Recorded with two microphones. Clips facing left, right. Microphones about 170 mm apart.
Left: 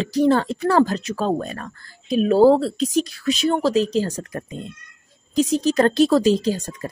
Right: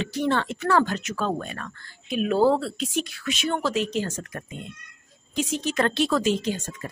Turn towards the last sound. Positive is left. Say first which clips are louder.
# left 6 dB
turn(degrees=35)  # may be behind; listen again after turning